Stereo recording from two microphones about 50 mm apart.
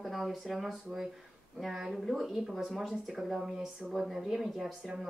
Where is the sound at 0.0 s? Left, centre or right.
Centre.